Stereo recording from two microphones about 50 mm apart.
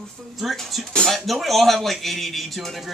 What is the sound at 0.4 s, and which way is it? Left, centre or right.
Speech, centre.